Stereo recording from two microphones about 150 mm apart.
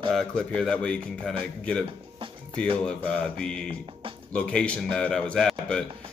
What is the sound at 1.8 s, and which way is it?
Music, 35° right (ahead or behind).